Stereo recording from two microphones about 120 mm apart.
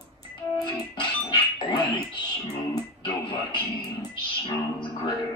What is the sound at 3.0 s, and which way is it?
Music, 40° left (ahead or behind).